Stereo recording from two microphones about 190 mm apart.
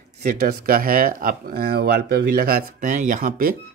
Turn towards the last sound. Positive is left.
turn(degrees=-45)  # may be behind; listen again after turning